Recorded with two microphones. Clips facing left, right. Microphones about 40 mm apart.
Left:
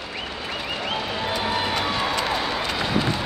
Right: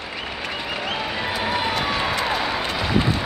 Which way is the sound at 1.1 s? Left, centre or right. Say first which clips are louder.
Right 1 dB; centre.